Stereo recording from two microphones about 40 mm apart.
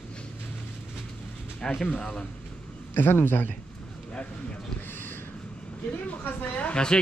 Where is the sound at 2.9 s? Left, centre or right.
Left.